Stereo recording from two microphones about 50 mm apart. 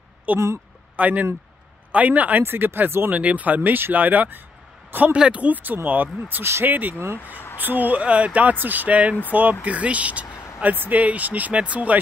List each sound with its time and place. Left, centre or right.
0.3 s speech: right
2.4 s speech: right
3.1 s speech: right
5.1 s speech: right
5.9 s speech: right